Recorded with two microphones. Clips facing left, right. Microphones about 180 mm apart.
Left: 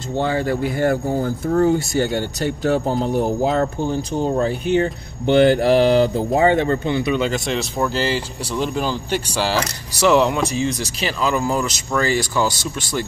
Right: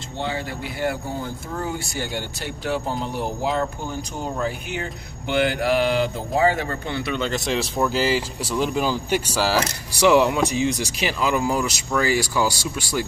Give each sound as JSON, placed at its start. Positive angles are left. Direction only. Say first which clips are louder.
{"t": 0.2, "sound": "speech", "louder": "left 8 dB", "side_deg": 45}
{"t": 6.3, "sound": "speech", "louder": "left 4 dB", "side_deg": 25}
{"t": 7.1, "sound": "speech", "louder": "left 4 dB", "side_deg": 5}